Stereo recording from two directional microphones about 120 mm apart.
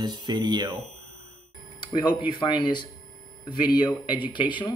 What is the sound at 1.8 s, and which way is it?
Speech, 40° left (ahead or behind).